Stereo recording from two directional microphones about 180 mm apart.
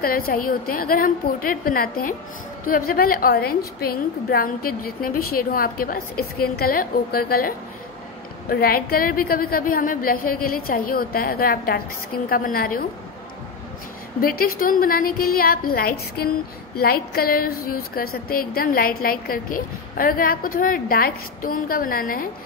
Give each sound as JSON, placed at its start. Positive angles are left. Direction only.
{"t": 0.0, "sound": "a woman's voice", "side_deg": 55}
{"t": 14.2, "sound": "a woman's voice", "side_deg": 55}